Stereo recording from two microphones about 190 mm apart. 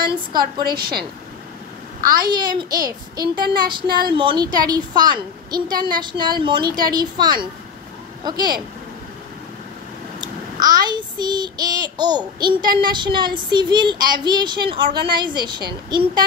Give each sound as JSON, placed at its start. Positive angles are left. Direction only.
{"t": 0.0, "sound": "child singing", "side_deg": -25}
{"t": 0.7, "sound": "a woman's voice", "side_deg": -55}
{"t": 2.1, "sound": "child singing", "side_deg": -20}
{"t": 10.8, "sound": "child singing", "side_deg": -25}